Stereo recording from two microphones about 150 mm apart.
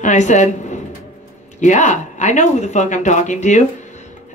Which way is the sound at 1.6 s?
55° left (ahead or behind).